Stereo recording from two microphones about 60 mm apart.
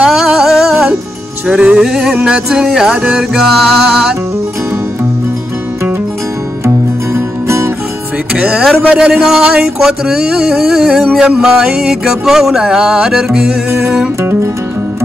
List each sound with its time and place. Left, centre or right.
0.0 s a sound: centre
1.5 s music: centre
7.2 s music: right
8.4 s music: centre